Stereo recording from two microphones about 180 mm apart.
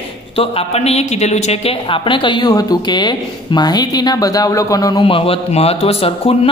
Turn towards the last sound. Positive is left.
turn(degrees=30)  # may be behind; listen again after turning